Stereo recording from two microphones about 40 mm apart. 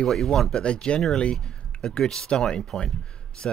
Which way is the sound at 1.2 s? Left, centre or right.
Left.